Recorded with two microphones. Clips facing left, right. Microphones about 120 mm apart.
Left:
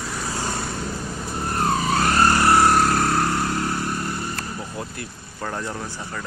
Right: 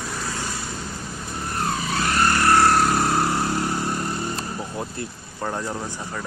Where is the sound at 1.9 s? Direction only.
40° left (ahead or behind).